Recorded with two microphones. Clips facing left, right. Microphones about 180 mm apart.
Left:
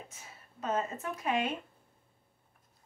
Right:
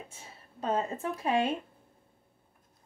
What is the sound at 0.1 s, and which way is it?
Speech, 30° right (ahead or behind).